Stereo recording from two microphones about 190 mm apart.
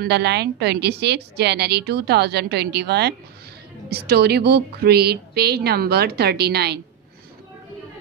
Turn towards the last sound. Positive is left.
turn(degrees=-60)  # may be behind; listen again after turning